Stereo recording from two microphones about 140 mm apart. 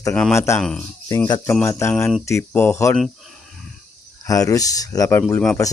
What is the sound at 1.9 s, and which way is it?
Speech, centre (ahead or behind).